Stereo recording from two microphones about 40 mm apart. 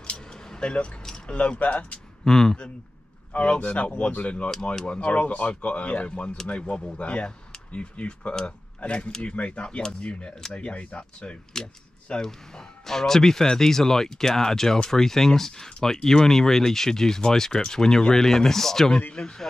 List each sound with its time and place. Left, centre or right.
0.0 s a sound: left
1.3 s speech: left
2.2 s speech: centre
3.3 s speech: left
11.5 s speech: centre
19.1 s speech: centre